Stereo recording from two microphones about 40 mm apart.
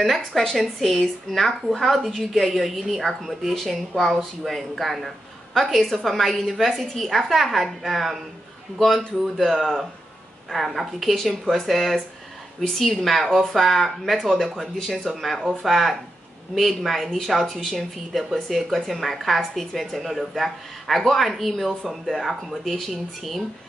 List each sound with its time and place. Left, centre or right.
0.0 s speech: centre